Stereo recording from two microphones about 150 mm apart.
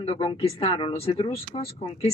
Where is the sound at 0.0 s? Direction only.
40° left (ahead or behind).